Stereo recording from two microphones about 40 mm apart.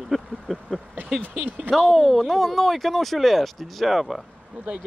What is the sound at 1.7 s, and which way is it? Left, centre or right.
Speech, centre.